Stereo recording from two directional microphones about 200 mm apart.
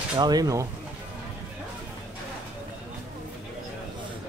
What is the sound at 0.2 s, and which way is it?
Speech, 20° right (ahead or behind).